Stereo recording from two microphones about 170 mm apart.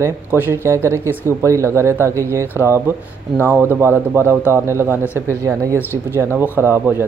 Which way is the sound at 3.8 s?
15° right (ahead or behind).